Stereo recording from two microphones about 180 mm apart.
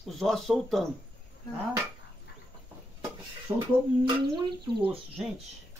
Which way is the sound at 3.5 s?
15° right (ahead or behind).